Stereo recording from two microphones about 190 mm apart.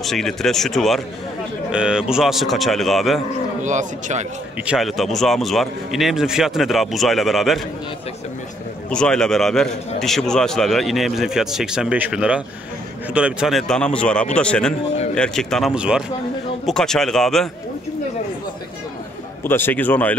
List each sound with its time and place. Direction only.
0.0 s a man's voice: centre (ahead or behind)
3.6 s speech: 40° right (ahead or behind)
4.6 s a man's voice: centre (ahead or behind)
8.9 s a man's voice: 5° left (ahead or behind)
19.4 s a man's voice: 10° left (ahead or behind)